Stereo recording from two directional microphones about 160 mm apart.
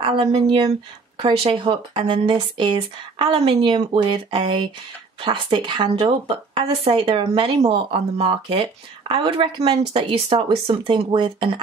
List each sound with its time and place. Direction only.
0.0 s speech: 35° right (ahead or behind)